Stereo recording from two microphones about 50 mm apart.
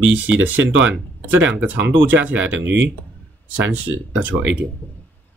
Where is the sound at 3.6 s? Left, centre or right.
Right.